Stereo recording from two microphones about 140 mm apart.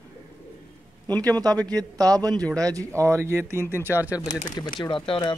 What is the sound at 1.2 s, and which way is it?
Speech, 25° right (ahead or behind).